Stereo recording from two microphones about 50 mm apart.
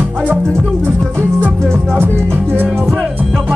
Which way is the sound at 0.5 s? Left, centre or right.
Right.